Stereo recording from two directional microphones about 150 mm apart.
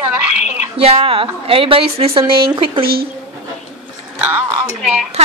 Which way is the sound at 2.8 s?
90° right.